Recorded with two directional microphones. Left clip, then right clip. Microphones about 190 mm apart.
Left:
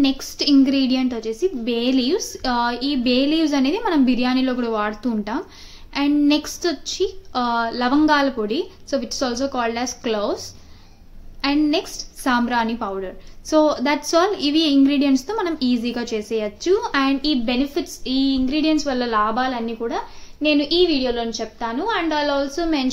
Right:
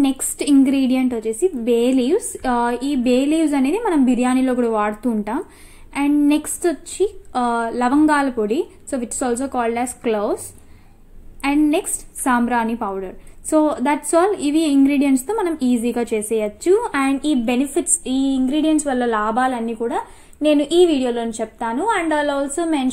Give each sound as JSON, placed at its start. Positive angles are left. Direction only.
{"t": 0.0, "sound": "a woman's voice", "side_deg": -10}
{"t": 4.2, "sound": "a woman's voice", "side_deg": -15}
{"t": 11.4, "sound": "a woman's voice", "side_deg": -10}
{"t": 22.2, "sound": "a woman's voice", "side_deg": -5}